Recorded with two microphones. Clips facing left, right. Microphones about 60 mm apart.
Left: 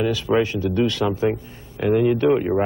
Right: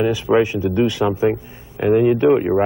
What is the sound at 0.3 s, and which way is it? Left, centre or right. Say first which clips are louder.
Speech: right 4 dB; centre.